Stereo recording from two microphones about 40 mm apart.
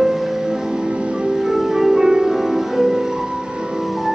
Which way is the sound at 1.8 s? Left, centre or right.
Centre.